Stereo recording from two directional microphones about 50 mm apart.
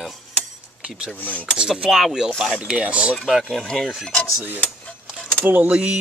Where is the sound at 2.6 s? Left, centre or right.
Centre.